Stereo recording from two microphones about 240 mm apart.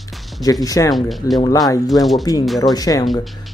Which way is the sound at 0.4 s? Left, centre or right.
Centre.